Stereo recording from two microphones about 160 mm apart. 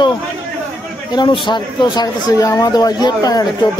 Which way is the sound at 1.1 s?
30° left (ahead or behind).